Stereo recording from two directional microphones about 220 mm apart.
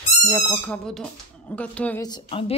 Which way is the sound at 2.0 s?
20° left (ahead or behind).